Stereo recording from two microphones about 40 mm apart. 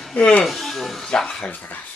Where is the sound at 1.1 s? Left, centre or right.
Left.